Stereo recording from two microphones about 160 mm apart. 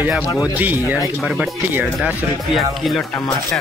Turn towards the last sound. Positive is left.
turn(degrees=0)  # may be behind; listen again after turning